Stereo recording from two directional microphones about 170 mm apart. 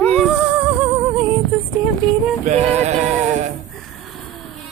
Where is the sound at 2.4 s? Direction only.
40° right (ahead or behind).